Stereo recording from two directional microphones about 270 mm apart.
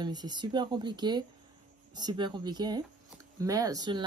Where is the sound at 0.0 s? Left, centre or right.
Centre.